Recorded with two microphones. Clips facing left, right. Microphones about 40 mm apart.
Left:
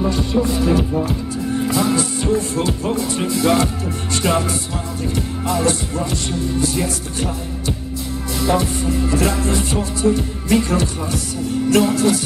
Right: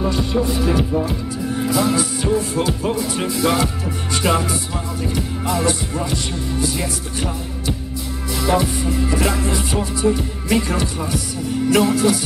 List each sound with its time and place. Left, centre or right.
0.0 s music: centre